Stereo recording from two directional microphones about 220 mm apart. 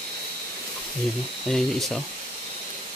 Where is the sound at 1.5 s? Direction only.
Centre (ahead or behind).